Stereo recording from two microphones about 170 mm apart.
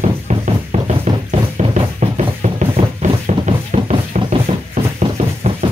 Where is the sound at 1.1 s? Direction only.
25° right (ahead or behind).